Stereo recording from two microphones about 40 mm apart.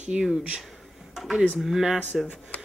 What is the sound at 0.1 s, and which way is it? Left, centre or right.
Speech, centre.